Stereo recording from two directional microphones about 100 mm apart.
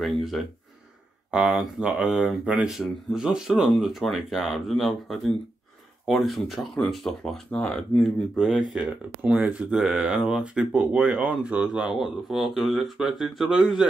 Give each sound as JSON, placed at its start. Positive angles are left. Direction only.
{"t": 0.0, "sound": "speech", "side_deg": 0}